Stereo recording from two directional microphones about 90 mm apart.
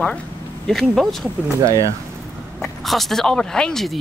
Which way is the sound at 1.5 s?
35° right (ahead or behind).